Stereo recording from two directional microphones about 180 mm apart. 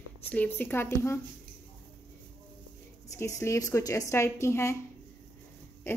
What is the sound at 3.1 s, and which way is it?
A woman's voice, 15° left (ahead or behind).